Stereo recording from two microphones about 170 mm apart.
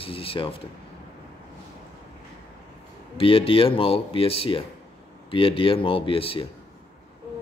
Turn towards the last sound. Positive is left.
turn(degrees=30)  # may be behind; listen again after turning